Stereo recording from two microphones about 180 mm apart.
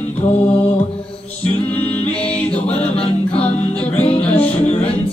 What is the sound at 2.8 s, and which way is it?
Music, 35° left (ahead or behind).